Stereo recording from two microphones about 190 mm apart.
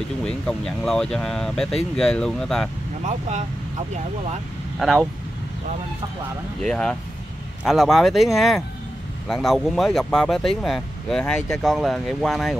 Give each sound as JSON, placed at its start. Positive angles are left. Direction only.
{"t": 0.2, "sound": "speech", "side_deg": 5}
{"t": 3.1, "sound": "speech", "side_deg": -35}
{"t": 4.7, "sound": "speech", "side_deg": 0}
{"t": 6.6, "sound": "speech", "side_deg": 5}